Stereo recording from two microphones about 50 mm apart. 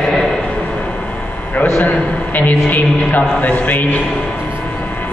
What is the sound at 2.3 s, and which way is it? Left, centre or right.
A man's voice, left.